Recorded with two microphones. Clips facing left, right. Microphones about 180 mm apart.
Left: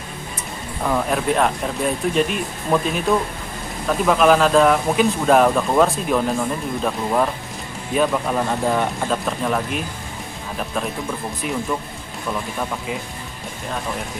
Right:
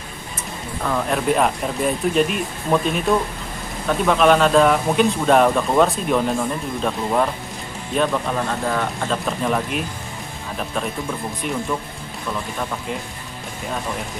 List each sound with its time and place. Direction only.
0.8 s speech: 5° left (ahead or behind)
8.6 s speech: 15° left (ahead or behind)
9.1 s speech: centre (ahead or behind)